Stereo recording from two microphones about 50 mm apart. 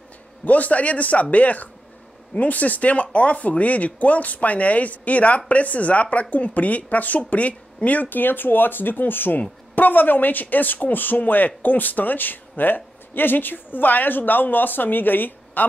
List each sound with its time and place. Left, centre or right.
0.5 s speech: left